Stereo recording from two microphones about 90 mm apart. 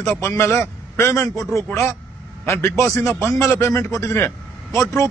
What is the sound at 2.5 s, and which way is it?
A man's voice, 30° left (ahead or behind).